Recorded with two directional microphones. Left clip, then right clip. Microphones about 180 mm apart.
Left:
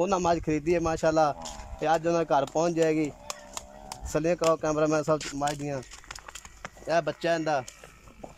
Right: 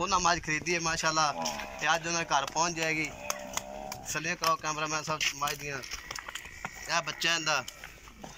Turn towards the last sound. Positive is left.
turn(degrees=60)  # may be behind; listen again after turning